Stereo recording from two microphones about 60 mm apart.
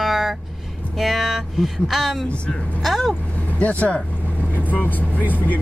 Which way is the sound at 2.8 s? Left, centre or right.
Centre.